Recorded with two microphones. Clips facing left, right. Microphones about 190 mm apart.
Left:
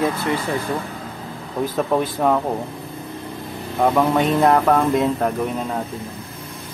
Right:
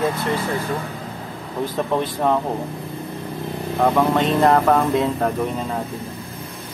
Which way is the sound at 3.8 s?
5° left (ahead or behind).